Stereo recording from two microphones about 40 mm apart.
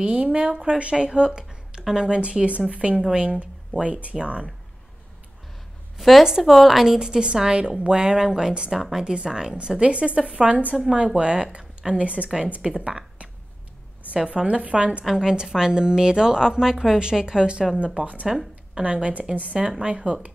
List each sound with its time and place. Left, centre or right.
0.0 s a woman's voice: right
5.9 s a woman's voice: centre
7.0 s a woman's voice: right
15.0 s a woman's voice: centre
18.3 s a woman's voice: centre
18.8 s a woman's voice: right